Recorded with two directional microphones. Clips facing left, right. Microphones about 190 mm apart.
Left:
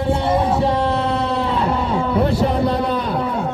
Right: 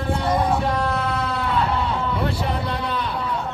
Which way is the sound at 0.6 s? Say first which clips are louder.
Left 5 dB; 25° left (ahead or behind).